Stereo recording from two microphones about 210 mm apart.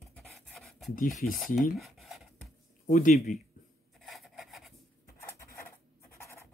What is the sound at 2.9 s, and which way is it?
Speech, 30° left (ahead or behind).